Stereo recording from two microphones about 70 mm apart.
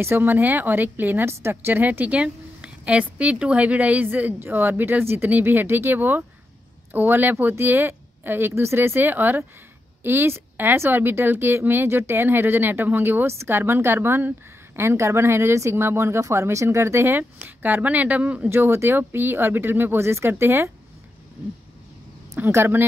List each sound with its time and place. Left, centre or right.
0.0 s a woman's voice: right
17.2 s a woman's voice: right
18.5 s speech: right
22.4 s speech: right